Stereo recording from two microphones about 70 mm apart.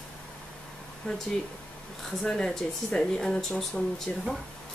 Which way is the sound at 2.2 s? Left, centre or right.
Centre.